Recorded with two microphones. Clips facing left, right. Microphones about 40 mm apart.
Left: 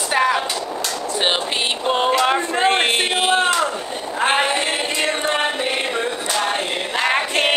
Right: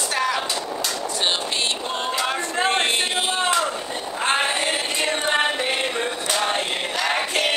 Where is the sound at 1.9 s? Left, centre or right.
Left.